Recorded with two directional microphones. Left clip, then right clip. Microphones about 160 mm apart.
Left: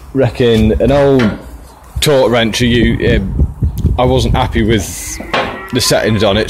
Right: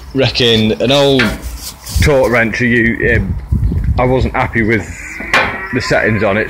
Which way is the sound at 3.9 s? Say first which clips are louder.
Left 1 dB; 30° left (ahead or behind).